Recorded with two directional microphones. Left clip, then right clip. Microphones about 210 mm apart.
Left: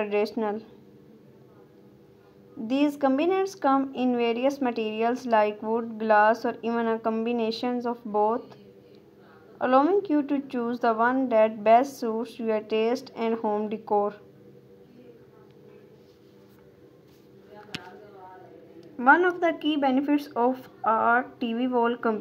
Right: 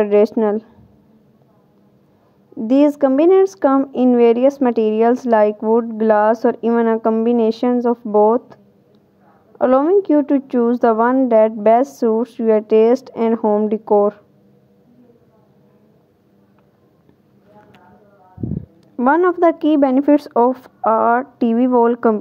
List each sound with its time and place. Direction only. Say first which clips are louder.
0.0 s speech: right 13 dB; 50° right (ahead or behind)
2.6 s speech: right 11 dB; 50° right (ahead or behind)
9.6 s speech: right 8 dB; 45° right (ahead or behind)
18.9 s speech: right 6 dB; 45° right (ahead or behind)